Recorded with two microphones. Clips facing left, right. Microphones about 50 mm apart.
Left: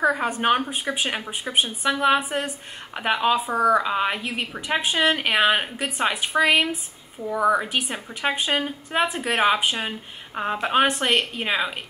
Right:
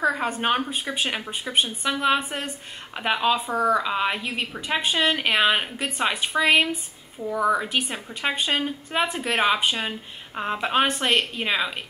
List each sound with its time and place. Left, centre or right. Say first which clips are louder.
0.1 s a woman's voice: left 3 dB; centre
7.3 s a woman's voice: left 2 dB; left
7.6 s a woman's voice: even; centre